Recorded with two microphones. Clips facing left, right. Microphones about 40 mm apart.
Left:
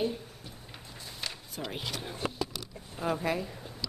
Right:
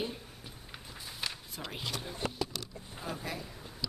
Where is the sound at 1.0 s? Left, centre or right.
Centre.